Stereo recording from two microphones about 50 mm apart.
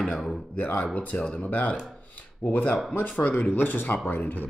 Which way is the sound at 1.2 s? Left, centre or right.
Centre.